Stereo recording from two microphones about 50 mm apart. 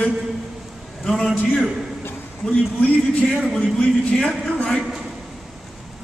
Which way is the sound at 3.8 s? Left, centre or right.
Left.